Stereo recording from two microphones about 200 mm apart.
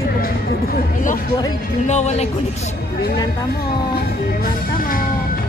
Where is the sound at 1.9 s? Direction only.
35° left (ahead or behind).